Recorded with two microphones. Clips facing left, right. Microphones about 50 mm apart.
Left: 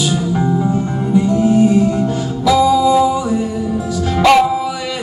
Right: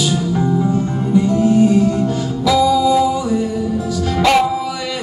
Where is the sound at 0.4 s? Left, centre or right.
Centre.